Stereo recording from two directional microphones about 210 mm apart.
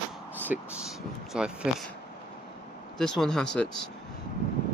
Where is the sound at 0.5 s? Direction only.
5° right (ahead or behind).